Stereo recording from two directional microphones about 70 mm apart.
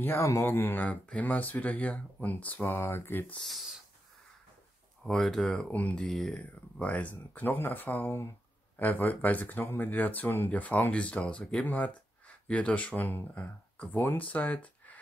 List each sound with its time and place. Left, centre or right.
0.0 s speech: left
2.8 s speech: left
3.3 s speech: centre
5.0 s speech: centre
5.7 s speech: left
6.0 s speech: centre
6.8 s speech: left